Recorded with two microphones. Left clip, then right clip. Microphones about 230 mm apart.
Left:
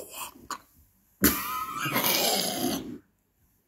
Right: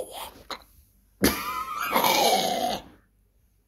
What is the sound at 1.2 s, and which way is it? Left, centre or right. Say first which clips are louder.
Dog: right 2 dB; centre.